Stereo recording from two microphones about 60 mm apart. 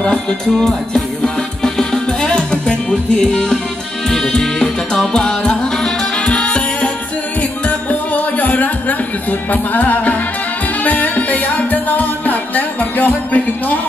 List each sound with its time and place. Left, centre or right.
0.0 s music: centre